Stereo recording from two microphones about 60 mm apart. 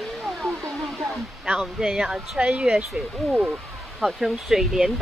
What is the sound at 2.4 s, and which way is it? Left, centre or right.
Speech, right.